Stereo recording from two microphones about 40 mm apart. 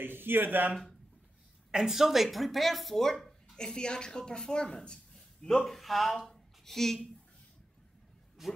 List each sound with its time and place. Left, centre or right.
0.0 s speech: right
1.7 s a woman's voice: centre
3.5 s speech: left
5.1 s a sound: centre
5.7 s speech: centre
8.4 s speech: centre